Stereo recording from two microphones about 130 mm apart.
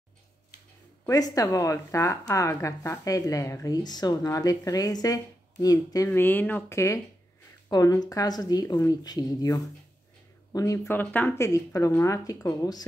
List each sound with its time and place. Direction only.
1.0 s speech: 25° left (ahead or behind)
6.0 s speech: 15° left (ahead or behind)
11.0 s speech: 15° left (ahead or behind); by 12.8 s 30° left (ahead or behind)